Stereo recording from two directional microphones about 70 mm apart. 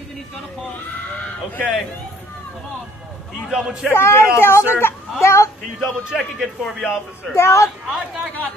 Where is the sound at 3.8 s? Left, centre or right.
Left.